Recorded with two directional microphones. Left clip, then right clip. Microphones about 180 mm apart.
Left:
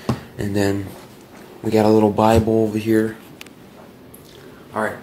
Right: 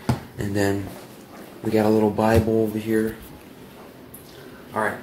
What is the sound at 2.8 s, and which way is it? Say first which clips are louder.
Speech: left 5 dB; 45° left (ahead or behind).